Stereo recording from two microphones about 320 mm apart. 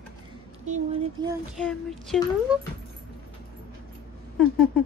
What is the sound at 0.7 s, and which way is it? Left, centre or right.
Speech, centre.